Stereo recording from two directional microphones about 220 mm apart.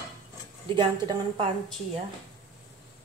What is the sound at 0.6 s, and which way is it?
Speech, 20° right (ahead or behind).